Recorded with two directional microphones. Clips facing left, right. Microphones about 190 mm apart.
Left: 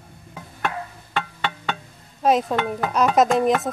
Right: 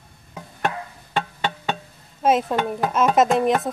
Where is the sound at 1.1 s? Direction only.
40° right (ahead or behind).